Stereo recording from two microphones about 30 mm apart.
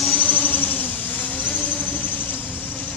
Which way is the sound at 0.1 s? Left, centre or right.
Left.